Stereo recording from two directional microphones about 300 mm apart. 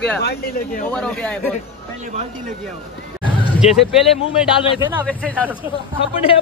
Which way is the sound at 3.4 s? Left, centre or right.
Centre.